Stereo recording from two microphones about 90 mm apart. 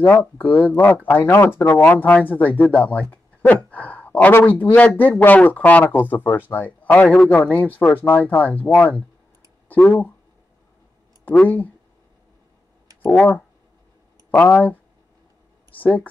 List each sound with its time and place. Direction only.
0.0 s speech: 20° left (ahead or behind)
11.4 s speech: 20° left (ahead or behind)
14.3 s speech: 15° left (ahead or behind)